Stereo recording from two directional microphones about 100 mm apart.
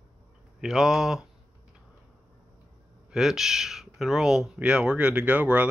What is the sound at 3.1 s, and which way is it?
Speech, 5° right (ahead or behind).